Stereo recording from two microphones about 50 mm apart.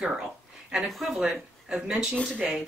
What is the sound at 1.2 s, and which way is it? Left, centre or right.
Speech, centre.